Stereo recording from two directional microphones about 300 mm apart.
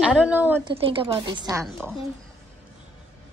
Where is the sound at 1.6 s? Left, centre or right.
Centre.